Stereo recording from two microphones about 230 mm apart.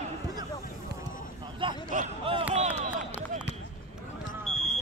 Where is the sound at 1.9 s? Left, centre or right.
Right.